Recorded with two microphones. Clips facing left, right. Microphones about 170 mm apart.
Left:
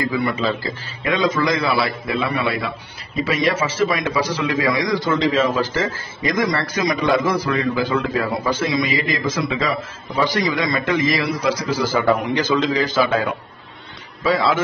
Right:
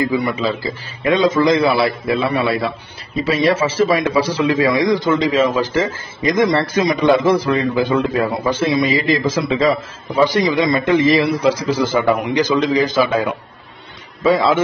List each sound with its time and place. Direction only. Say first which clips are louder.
0.1 s a man's voice: right 3 dB; 15° right (ahead or behind)
1.0 s a man's voice: right 5 dB; 30° right (ahead or behind)
10.1 s a man's voice: right 5 dB; 20° right (ahead or behind)
14.2 s a man's voice: right 4 dB; 25° right (ahead or behind)